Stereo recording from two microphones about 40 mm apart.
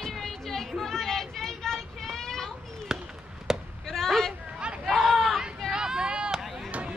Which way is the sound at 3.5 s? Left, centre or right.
Centre.